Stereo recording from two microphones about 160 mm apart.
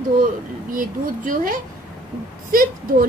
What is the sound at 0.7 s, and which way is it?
A woman's voice, 60° right (ahead or behind).